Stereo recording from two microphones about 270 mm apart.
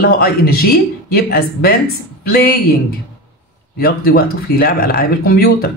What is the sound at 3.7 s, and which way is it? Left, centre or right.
Speech, left.